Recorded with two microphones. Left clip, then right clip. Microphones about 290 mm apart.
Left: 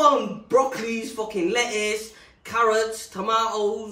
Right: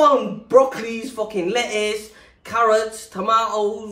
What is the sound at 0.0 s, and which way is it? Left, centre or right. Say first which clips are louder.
Speech: right 3 dB; centre.